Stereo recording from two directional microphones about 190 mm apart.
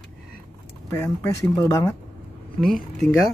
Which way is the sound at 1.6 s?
20° left (ahead or behind).